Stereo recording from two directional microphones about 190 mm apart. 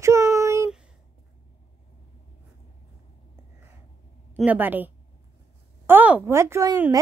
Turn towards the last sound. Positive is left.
turn(degrees=-15)  # may be behind; listen again after turning